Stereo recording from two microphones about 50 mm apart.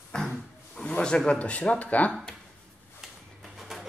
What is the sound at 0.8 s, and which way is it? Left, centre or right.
Speech, centre.